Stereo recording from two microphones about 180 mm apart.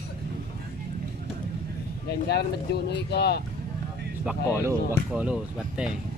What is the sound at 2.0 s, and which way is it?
Speech, 65° left (ahead or behind).